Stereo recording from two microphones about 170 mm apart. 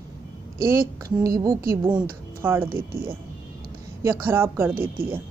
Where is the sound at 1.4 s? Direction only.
20° right (ahead or behind).